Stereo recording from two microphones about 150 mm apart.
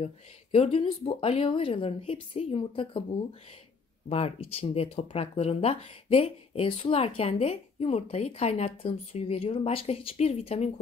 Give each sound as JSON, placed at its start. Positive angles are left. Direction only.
{"t": 0.0, "sound": "speech", "side_deg": 40}